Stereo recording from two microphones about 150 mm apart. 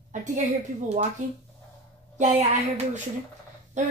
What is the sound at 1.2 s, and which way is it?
A woman's voice, 55° right (ahead or behind).